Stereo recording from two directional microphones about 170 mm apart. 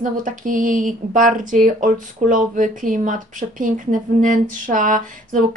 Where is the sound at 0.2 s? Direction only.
50° right (ahead or behind).